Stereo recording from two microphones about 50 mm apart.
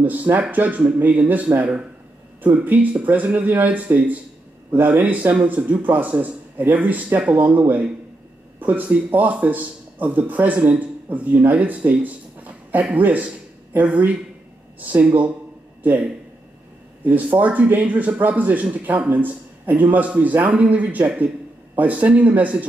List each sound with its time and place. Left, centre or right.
0.0 s speech: right
6.0 s a man's voice: right
17.0 s speech: right